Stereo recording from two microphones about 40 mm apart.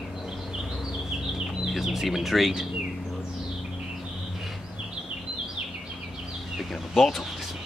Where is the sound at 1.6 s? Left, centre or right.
Centre.